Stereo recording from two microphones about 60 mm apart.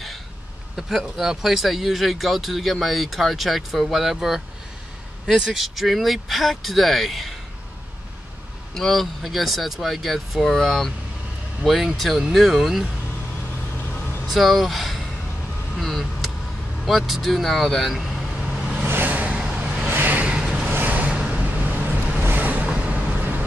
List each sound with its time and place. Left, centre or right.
0.7 s speech: centre
8.7 s speech: centre
14.2 s speech: centre
16.8 s vehicle: centre
18.9 s vehicle: right
19.9 s vehicle: right
21.1 s vehicle: centre
21.6 s vehicle: right